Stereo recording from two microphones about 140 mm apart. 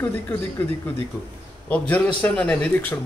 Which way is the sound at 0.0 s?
10° left (ahead or behind).